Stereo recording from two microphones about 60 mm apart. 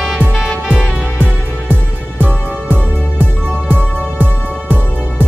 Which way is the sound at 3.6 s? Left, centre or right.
Left.